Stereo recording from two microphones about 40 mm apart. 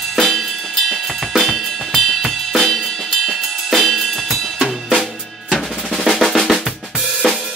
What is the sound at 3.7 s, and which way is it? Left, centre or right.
Drum kit, centre.